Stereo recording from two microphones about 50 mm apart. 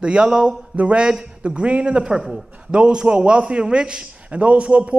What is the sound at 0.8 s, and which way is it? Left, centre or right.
A man's voice, right.